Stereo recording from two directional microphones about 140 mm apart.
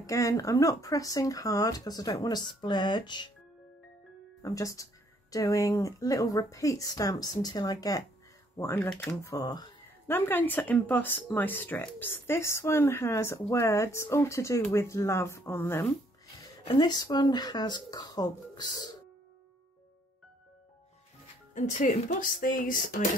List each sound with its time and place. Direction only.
0.0 s speech: 25° left (ahead or behind)
4.4 s speech: 25° left (ahead or behind)
8.5 s speech: 15° left (ahead or behind)
9.2 s speech: 25° left (ahead or behind)
10.0 s speech: 15° left (ahead or behind)
16.6 s speech: 30° left (ahead or behind)
21.5 s speech: 60° left (ahead or behind)
22.2 s a sound: 90° left; by 23.0 s 75° left (ahead or behind)